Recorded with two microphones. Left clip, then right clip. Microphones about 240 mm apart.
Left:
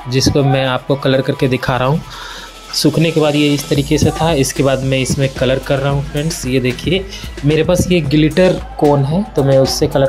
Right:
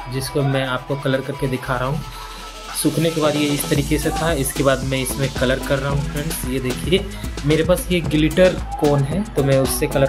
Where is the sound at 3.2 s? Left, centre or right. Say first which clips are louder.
Left 5 dB; left.